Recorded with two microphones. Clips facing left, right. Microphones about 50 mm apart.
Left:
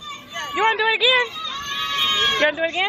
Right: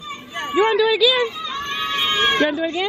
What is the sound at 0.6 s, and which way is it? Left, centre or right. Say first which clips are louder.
Speech: right 3 dB; left.